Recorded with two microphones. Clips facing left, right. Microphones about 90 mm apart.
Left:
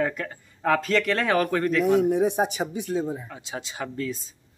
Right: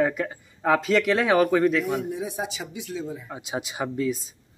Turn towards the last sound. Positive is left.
turn(degrees=-10)  # may be behind; listen again after turning